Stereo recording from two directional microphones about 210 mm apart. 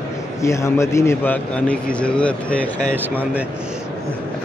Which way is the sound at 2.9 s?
10° right (ahead or behind).